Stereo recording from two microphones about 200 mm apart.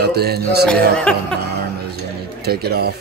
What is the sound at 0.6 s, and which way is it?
Speech, 5° left (ahead or behind).